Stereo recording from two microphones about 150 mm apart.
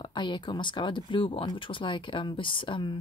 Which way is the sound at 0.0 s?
30° left (ahead or behind).